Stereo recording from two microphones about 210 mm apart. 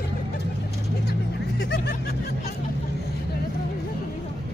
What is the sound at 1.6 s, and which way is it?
Vehicle, 50° left (ahead or behind).